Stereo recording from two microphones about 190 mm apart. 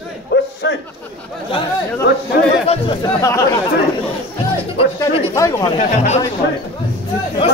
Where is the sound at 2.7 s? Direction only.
25° left (ahead or behind).